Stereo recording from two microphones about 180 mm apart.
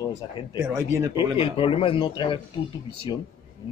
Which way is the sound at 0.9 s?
15° right (ahead or behind).